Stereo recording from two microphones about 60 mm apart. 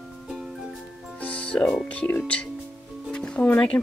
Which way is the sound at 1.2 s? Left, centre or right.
Left.